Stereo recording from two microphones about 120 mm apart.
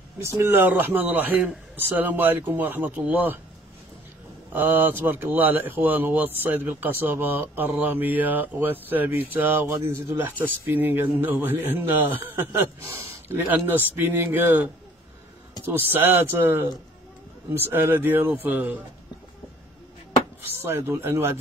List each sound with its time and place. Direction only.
0.2 s speech: 20° right (ahead or behind)
4.6 s speech: 15° right (ahead or behind)
15.9 s speech: 15° right (ahead or behind)
20.4 s speech: 20° right (ahead or behind)